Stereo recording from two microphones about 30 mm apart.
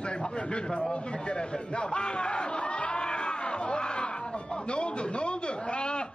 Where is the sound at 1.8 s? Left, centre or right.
Left.